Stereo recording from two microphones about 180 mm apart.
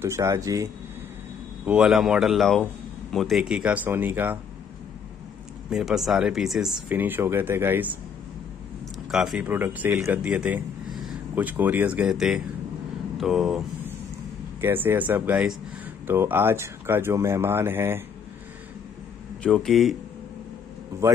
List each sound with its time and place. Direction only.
0.0 s speech: 15° right (ahead or behind)
1.7 s a man's voice: 5° right (ahead or behind)
5.7 s speech: centre (ahead or behind)
9.1 s speech: 5° right (ahead or behind)
19.4 s a man's voice: 5° left (ahead or behind)
21.0 s a man's voice: 15° right (ahead or behind)